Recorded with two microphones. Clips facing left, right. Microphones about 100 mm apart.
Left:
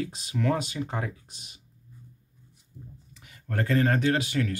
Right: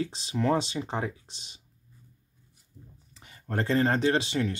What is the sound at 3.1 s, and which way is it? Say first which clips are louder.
Speech: right 1 dB; 30° right (ahead or behind).